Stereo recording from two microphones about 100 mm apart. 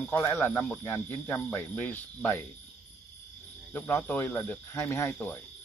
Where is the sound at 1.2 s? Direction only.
25° left (ahead or behind).